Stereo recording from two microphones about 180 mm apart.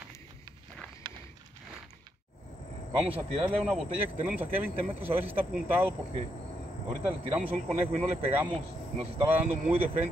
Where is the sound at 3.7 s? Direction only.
5° right (ahead or behind).